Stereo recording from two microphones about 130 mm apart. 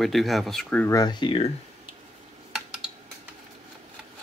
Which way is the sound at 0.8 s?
30° left (ahead or behind).